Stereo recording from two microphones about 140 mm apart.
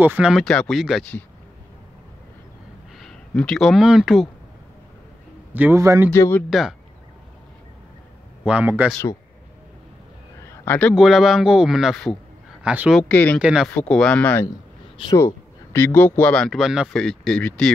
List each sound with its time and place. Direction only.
0.0 s a man's voice: 15° right (ahead or behind)
0.3 s speech: 5° left (ahead or behind)
3.0 s speech: 5° left (ahead or behind)
5.5 s a man's voice: 15° right (ahead or behind)
6.1 s speech: 15° left (ahead or behind)
8.5 s a man's voice: 10° right (ahead or behind)
10.4 s a sound: 20° left (ahead or behind)
11.0 s speech: 5° right (ahead or behind)
12.6 s a man's voice: 5° right (ahead or behind)
13.1 s speech: 10° left (ahead or behind)
13.4 s a man's voice: 5° right (ahead or behind)
13.7 s speech: 5° left (ahead or behind)